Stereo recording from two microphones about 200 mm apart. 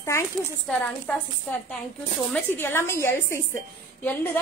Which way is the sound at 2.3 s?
10° left (ahead or behind).